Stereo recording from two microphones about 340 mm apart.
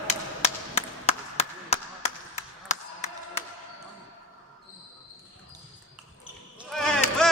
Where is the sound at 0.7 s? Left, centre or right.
Centre.